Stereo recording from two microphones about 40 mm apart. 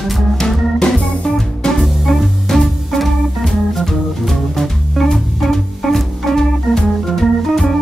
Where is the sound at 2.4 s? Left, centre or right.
Centre.